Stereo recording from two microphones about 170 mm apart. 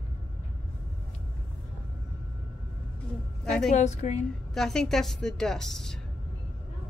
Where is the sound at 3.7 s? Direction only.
45° left (ahead or behind).